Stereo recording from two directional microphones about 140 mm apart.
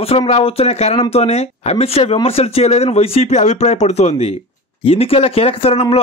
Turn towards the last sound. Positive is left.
turn(degrees=45)  # may be behind; listen again after turning